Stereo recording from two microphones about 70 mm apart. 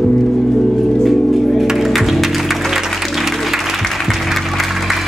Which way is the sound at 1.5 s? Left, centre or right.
Centre.